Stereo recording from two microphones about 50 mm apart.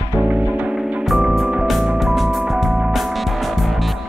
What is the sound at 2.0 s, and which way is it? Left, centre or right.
Music, centre.